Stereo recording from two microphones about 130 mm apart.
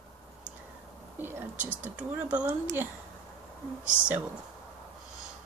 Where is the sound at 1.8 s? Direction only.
10° right (ahead or behind).